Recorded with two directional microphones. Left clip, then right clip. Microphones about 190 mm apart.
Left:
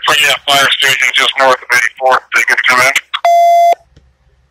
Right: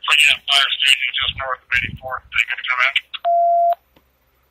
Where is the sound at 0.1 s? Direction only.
45° left (ahead or behind).